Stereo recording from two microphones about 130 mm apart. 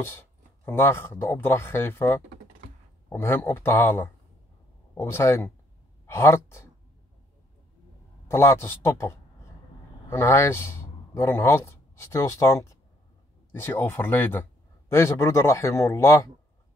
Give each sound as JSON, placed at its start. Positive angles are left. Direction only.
{"t": 0.7, "sound": "speech", "side_deg": 15}
{"t": 8.3, "sound": "a man's voice", "side_deg": 20}